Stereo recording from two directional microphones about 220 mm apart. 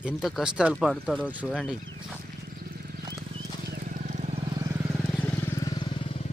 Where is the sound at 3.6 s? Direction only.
45° right (ahead or behind); by 4.9 s 15° right (ahead or behind).